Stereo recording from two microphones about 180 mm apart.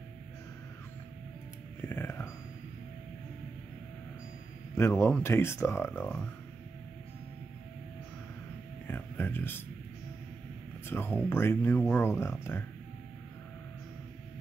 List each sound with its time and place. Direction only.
1.8 s music: 10° left (ahead or behind)
4.7 s speech: 15° left (ahead or behind)
8.8 s a sound: 10° left (ahead or behind)
10.9 s speech: 10° left (ahead or behind)